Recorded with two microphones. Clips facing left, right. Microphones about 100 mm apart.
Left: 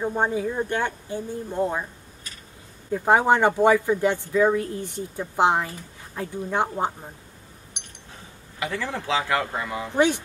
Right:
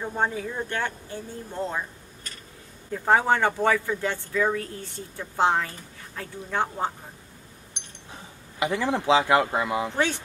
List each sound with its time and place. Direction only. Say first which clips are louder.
0.0 s speech: left 4 dB; 15° left (ahead or behind)
2.9 s speech: left 3 dB; 15° left (ahead or behind)
8.5 s speech: right 4 dB; 20° right (ahead or behind)
9.9 s speech: left 10 dB; 15° left (ahead or behind)